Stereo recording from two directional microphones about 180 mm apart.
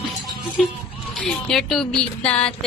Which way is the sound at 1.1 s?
5° left (ahead or behind).